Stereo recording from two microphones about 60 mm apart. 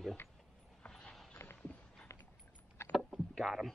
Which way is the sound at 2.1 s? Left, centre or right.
Left.